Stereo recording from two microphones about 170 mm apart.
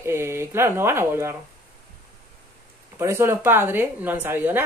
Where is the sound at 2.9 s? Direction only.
15° right (ahead or behind).